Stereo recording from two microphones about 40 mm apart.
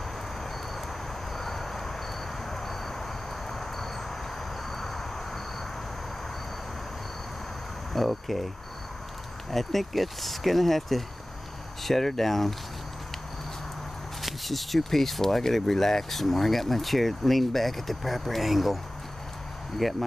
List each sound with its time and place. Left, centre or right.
1.3 s vehicle: centre
2.5 s a sound: centre
3.4 s vehicle: centre
4.6 s a sound: centre
7.9 s speech: centre
9.5 s speech: centre
14.2 s speech: centre
19.8 s speech: centre